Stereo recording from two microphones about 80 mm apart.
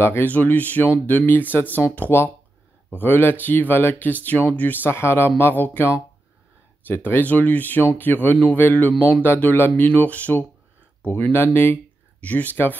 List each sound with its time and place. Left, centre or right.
0.0 s speech: left
7.1 s speech: left